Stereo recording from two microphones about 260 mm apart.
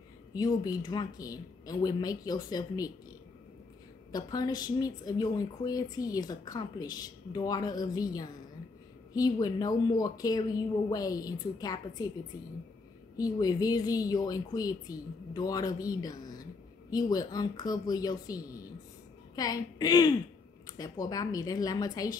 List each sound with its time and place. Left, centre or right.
0.3 s speech: centre
4.1 s speech: centre
13.2 s speech: centre